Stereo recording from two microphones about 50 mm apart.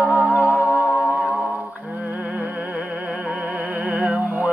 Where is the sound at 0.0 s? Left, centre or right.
Right.